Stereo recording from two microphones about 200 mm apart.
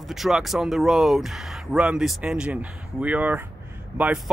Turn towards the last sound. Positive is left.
turn(degrees=-10)  # may be behind; listen again after turning